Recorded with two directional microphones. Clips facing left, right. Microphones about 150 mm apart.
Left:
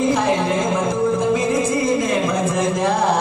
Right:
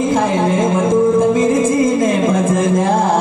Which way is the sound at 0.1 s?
50° right (ahead or behind).